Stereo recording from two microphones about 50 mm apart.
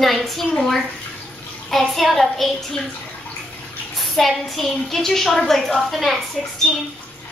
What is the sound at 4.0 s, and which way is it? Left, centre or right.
A woman's voice, centre.